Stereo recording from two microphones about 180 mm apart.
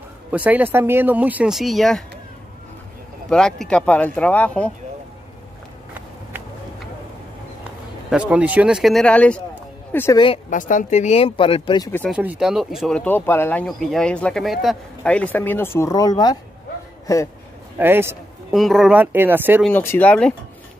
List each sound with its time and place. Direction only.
0.3 s speech: 10° right (ahead or behind)
3.3 s speech: 5° left (ahead or behind)
8.1 s speech: 5° right (ahead or behind)
10.1 s a woman's voice: 30° left (ahead or behind)
10.5 s speech: 45° left (ahead or behind); by 11.9 s 25° left (ahead or behind)
12.1 s speech: 5° right (ahead or behind); by 17.2 s 15° left (ahead or behind)
17.7 s speech: 10° right (ahead or behind)
18.5 s speech: centre (ahead or behind)
19.6 s speech: 10° left (ahead or behind)